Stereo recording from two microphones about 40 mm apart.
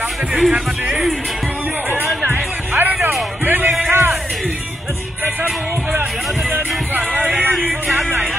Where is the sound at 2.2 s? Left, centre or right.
Right.